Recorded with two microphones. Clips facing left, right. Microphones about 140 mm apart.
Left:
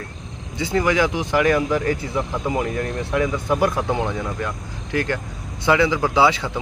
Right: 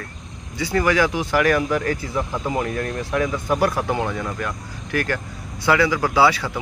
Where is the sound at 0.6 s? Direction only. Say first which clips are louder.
Even; 20° left (ahead or behind).